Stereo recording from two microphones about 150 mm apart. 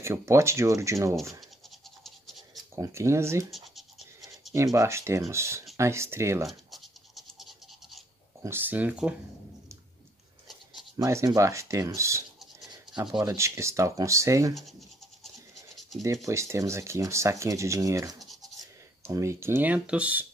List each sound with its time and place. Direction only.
0.0 s speech: 20° right (ahead or behind)
2.0 s scratch: centre (ahead or behind)
2.7 s speech: 20° right (ahead or behind)
3.4 s scratch: centre (ahead or behind)
4.7 s speech: 20° right (ahead or behind)
6.4 s scratch: centre (ahead or behind)
8.4 s speech: 15° right (ahead or behind)
11.0 s speech: 20° right (ahead or behind)
13.2 s speech: 20° right (ahead or behind)
15.2 s scratch: centre (ahead or behind)
16.3 s speech: 20° right (ahead or behind)